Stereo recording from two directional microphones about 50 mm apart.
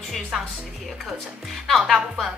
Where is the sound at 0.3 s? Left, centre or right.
Centre.